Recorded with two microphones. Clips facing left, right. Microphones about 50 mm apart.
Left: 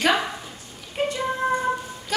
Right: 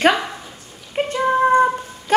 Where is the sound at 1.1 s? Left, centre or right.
Right.